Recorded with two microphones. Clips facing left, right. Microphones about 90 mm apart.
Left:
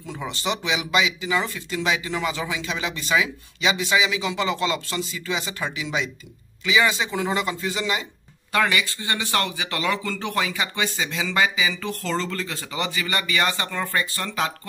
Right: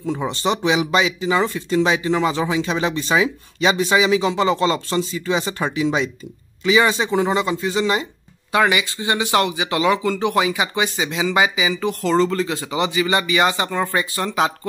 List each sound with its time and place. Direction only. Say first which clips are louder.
0.0 s speech: right 7 dB; 35° right (ahead or behind)
8.5 s speech: right 4 dB; 15° right (ahead or behind)